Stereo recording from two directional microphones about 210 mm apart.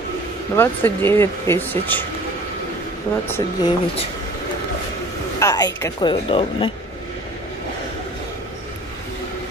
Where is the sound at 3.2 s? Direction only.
10° left (ahead or behind).